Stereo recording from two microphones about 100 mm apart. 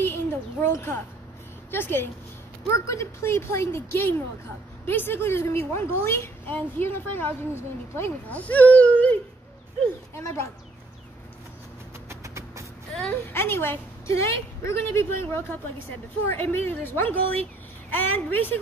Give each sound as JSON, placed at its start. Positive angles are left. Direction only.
{"t": 0.0, "sound": "a child's voice", "side_deg": 20}
{"t": 12.1, "sound": "music", "side_deg": -30}
{"t": 13.1, "sound": "a woman's voice", "side_deg": 25}